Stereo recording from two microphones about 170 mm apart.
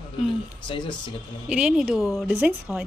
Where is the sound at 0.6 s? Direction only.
30° left (ahead or behind).